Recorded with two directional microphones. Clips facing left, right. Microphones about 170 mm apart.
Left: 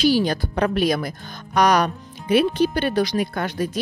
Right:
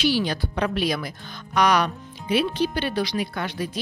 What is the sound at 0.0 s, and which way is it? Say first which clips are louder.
Speech: left 4 dB; 45° left (ahead or behind).